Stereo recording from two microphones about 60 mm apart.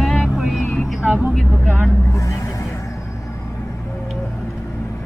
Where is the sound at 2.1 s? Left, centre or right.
Left.